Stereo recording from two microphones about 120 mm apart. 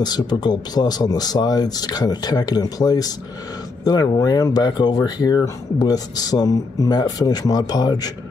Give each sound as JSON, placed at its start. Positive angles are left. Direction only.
{"t": 0.0, "sound": "speech", "side_deg": 35}